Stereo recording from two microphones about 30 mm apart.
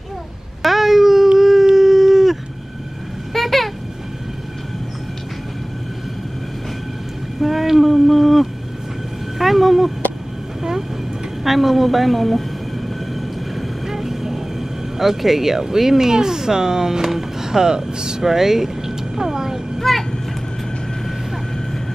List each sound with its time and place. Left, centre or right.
0.6 s baby cry: centre
1.8 s a sound: centre
3.3 s a sound: centre
7.4 s a sound: centre
11.4 s a woman's voice: centre
13.8 s vehicle: centre
15.0 s speech: centre; by 18.2 s right
18.2 s vehicle: centre
19.8 s vehicle: centre